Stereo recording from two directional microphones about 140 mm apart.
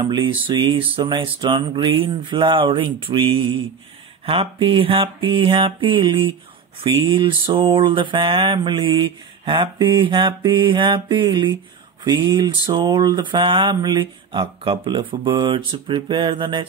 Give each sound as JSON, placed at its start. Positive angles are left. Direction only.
{"t": 0.0, "sound": "mantra", "side_deg": -35}